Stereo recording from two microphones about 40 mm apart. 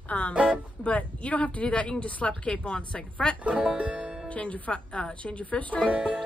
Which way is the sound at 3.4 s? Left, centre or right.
Right.